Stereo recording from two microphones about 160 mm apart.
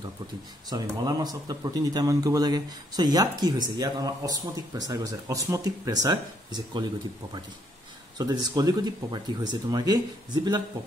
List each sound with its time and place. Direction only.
0.7 s speech: 25° right (ahead or behind)
8.2 s speech: 25° right (ahead or behind)